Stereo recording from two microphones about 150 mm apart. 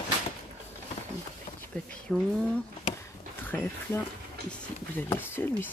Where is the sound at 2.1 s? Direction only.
5° left (ahead or behind).